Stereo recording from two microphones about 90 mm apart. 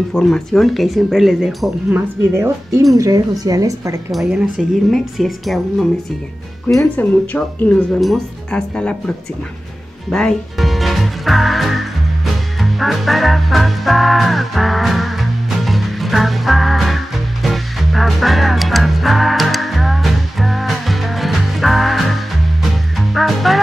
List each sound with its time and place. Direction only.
0.1 s music: 5° left (ahead or behind)
2.3 s speech: 30° right (ahead or behind)
2.9 s speech: 40° right (ahead or behind)
4.1 s music: 5° right (ahead or behind)
7.0 s speech: 15° left (ahead or behind)
10.0 s music: 5° left (ahead or behind)